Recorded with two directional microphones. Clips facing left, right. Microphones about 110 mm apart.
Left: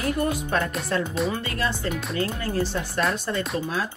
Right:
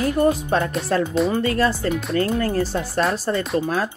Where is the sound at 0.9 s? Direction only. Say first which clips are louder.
Right 6 dB; 40° right (ahead or behind).